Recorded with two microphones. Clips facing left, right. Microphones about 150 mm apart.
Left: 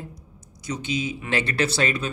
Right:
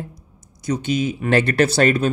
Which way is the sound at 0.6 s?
50° right (ahead or behind).